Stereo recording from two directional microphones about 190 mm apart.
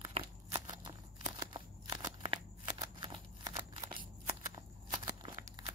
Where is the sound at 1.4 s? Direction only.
20° right (ahead or behind).